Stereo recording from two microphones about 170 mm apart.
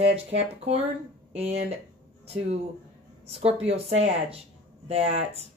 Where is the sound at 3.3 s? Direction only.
35° right (ahead or behind).